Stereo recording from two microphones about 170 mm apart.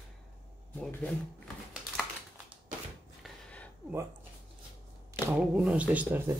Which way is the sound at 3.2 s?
5° left (ahead or behind).